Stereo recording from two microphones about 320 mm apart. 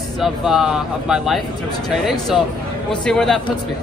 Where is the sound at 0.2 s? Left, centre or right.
Centre.